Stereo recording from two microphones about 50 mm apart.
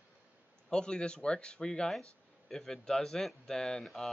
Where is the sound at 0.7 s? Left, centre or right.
Centre.